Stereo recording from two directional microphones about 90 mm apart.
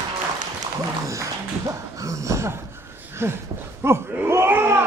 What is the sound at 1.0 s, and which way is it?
Music, 35° right (ahead or behind).